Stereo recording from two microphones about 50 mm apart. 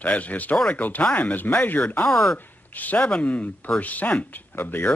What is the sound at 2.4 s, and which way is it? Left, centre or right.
Speech, left.